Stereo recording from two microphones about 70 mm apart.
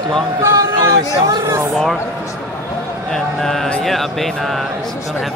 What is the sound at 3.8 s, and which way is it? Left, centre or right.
Speech, centre.